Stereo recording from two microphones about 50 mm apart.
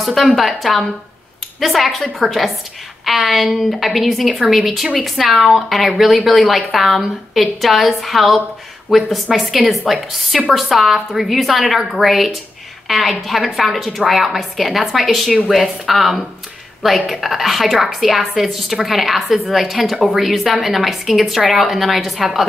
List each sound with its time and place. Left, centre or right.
0.0 s a woman's voice: centre